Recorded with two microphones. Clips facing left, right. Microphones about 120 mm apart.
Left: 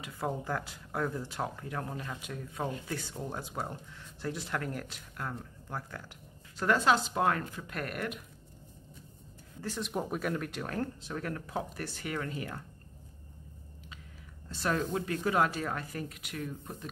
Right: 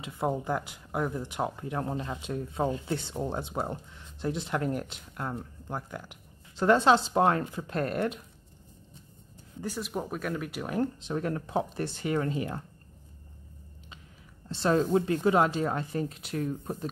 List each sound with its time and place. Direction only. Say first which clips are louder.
0.0 s speech: right 5 dB; 20° right (ahead or behind)
9.6 s speech: right 1 dB; 10° right (ahead or behind); by 12.6 s 25° right (ahead or behind)
14.5 s speech: right 7 dB; 25° right (ahead or behind)